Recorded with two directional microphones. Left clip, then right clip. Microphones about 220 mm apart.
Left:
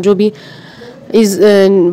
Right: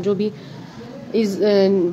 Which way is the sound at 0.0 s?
45° left (ahead or behind).